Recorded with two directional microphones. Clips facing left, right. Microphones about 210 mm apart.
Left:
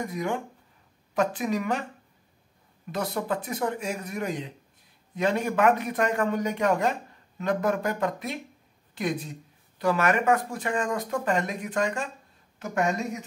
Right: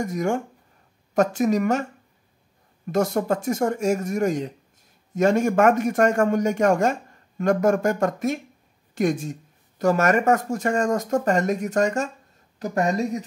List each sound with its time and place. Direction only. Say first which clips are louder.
0.0 s a man's voice: right 5 dB; 45° right (ahead or behind)
2.9 s a man's voice: right 7 dB; 45° right (ahead or behind)